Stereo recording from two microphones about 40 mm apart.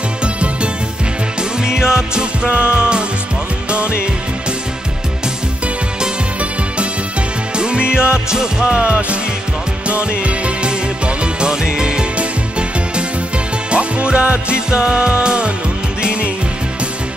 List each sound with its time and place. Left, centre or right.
0.2 s music: right
1.6 s music: centre
2.4 s music: right
7.5 s music: right
8.8 s music: right